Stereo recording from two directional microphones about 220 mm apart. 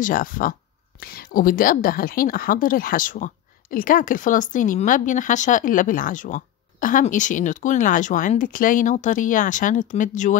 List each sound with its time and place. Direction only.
0.0 s speech: 40° left (ahead or behind)